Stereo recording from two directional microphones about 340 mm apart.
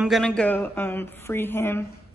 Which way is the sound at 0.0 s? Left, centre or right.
Centre.